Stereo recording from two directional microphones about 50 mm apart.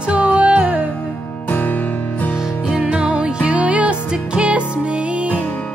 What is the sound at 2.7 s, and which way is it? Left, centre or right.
Music, centre.